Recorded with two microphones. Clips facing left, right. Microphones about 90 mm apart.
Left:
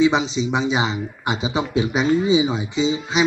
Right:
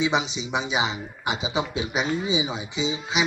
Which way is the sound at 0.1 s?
35° left (ahead or behind).